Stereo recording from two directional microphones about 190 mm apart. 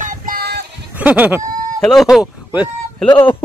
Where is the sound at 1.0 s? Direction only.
10° right (ahead or behind).